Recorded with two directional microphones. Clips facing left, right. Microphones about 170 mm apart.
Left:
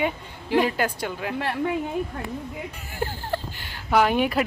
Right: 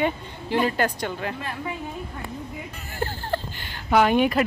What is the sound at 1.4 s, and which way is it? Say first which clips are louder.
Speech: left 6 dB; 70° left (ahead or behind).